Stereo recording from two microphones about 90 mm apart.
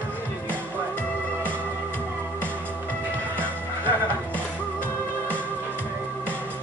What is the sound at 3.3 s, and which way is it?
Music, 20° left (ahead or behind).